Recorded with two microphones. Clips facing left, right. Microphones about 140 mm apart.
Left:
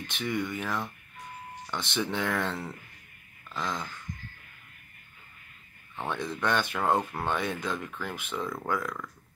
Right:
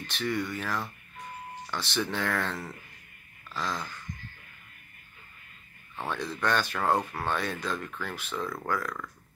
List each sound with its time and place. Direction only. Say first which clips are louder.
0.0 s speech: even; 15° left (ahead or behind)
5.9 s speech: left 1 dB; 20° left (ahead or behind)
8.8 s speech: even; 5° left (ahead or behind)